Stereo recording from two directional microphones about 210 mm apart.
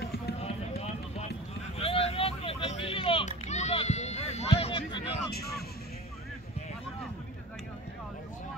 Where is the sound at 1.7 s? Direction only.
30° left (ahead or behind).